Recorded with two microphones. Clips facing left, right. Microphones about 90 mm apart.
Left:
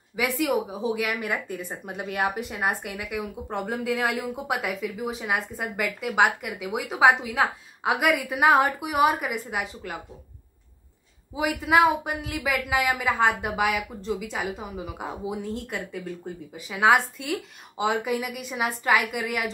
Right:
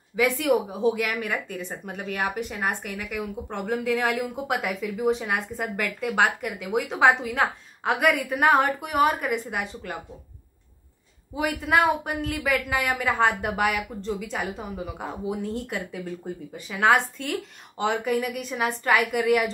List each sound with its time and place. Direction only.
0.1 s speech: 5° left (ahead or behind)
1.9 s speech: 15° left (ahead or behind)
11.3 s speech: 5° left (ahead or behind)